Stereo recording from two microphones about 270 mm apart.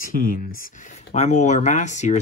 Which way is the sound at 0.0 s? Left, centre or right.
Left.